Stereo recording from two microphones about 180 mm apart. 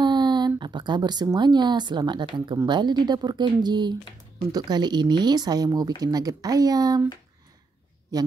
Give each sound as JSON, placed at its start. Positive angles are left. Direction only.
{"t": 0.0, "sound": "a sound", "side_deg": -25}
{"t": 0.6, "sound": "speech", "side_deg": -25}
{"t": 8.1, "sound": "speech", "side_deg": -20}